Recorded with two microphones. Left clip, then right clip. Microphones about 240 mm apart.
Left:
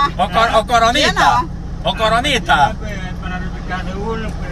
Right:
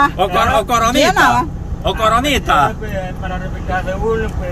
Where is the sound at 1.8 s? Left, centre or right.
Centre.